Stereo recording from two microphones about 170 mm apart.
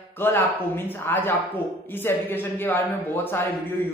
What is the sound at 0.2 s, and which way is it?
A man's voice, 15° left (ahead or behind).